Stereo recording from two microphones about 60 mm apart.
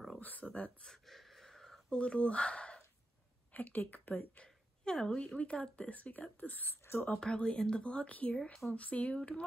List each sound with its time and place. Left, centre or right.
0.2 s speech: left
0.8 s a sound: centre
2.0 s speech: centre
3.5 s speech: left
4.8 s speech: centre; by 7.2 s left
7.2 s speech: centre